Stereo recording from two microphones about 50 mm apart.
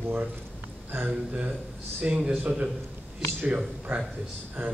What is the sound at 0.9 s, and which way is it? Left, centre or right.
Speech, right.